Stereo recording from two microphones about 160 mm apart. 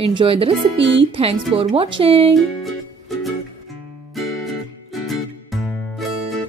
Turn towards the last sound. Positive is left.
turn(degrees=0)  # may be behind; listen again after turning